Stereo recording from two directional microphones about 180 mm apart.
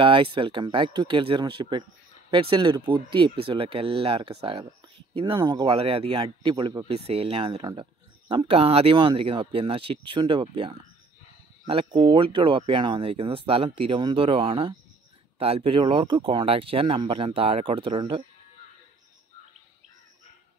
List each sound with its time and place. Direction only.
0.0 s speech: 25° right (ahead or behind)